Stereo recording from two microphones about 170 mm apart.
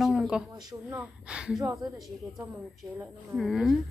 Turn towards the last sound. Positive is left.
turn(degrees=0)  # may be behind; listen again after turning